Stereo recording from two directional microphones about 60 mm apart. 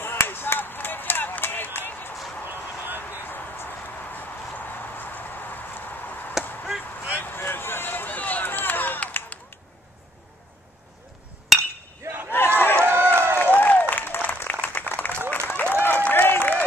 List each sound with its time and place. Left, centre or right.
0.0 s chop: left
2.4 s a sound: right
3.3 s a sound: left
7.1 s run: left
11.5 s chink: centre
12.0 s a sound: right
12.5 s run: left
12.8 s run: right
13.6 s applause: left